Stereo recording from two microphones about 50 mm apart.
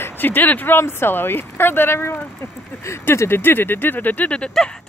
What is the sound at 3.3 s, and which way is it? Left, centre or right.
Speech, left.